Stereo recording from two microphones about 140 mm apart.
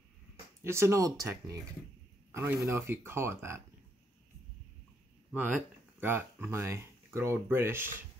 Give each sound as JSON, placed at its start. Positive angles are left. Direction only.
{"t": 0.7, "sound": "speech", "side_deg": -20}
{"t": 5.3, "sound": "speech", "side_deg": -15}